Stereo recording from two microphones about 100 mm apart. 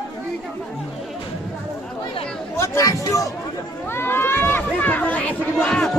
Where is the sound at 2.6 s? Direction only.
30° left (ahead or behind).